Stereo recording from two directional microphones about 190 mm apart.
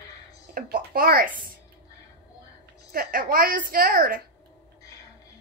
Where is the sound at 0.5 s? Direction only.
50° right (ahead or behind).